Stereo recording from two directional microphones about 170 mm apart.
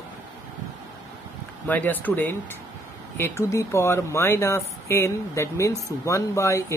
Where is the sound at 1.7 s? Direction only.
10° left (ahead or behind).